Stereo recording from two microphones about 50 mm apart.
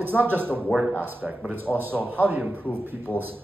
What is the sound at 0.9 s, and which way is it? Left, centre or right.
A man's voice, right.